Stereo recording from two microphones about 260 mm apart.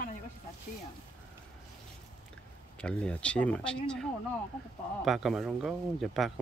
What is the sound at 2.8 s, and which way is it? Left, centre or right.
Speech, centre.